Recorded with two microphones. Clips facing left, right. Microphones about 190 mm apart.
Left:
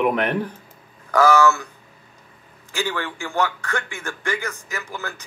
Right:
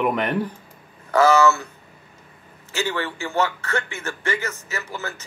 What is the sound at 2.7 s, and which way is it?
A man's voice, 10° left (ahead or behind).